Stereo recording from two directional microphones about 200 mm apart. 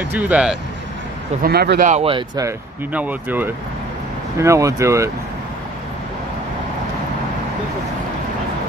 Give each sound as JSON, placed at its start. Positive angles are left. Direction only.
{"t": 0.1, "sound": "speech", "side_deg": -5}
{"t": 1.4, "sound": "speech", "side_deg": -50}
{"t": 1.9, "sound": "speech", "side_deg": -30}
{"t": 2.9, "sound": "speech", "side_deg": -10}